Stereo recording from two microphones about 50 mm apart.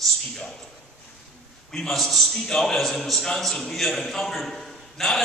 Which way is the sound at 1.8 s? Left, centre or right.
Centre.